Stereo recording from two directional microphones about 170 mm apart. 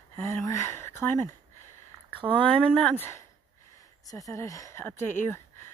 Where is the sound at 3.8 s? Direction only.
20° left (ahead or behind).